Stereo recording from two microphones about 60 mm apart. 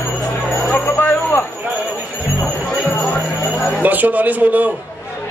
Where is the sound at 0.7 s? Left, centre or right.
Left.